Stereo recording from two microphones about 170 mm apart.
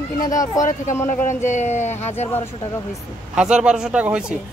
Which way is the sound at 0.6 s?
45° left (ahead or behind).